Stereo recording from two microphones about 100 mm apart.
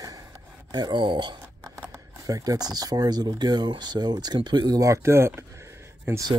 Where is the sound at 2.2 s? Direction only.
40° right (ahead or behind).